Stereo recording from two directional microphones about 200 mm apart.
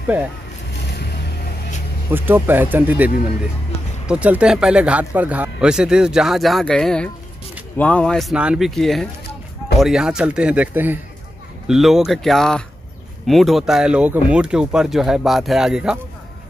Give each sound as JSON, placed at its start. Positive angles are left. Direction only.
{"t": 0.7, "sound": "vehicle", "side_deg": 60}
{"t": 2.0, "sound": "speech", "side_deg": -10}
{"t": 4.1, "sound": "speech", "side_deg": -5}